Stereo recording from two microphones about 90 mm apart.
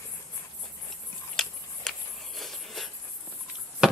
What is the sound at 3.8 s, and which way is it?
Basketball bounce, 5° right (ahead or behind).